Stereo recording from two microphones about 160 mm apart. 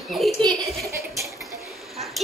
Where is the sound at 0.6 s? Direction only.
Centre (ahead or behind).